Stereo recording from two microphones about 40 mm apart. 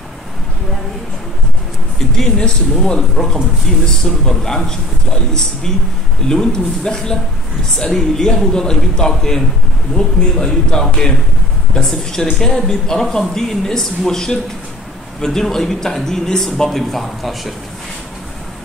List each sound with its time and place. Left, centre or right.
2.0 s a man's voice: centre
6.2 s a man's voice: centre
10.4 s a man's voice: centre